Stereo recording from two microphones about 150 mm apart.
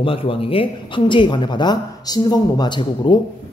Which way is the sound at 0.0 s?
35° left (ahead or behind).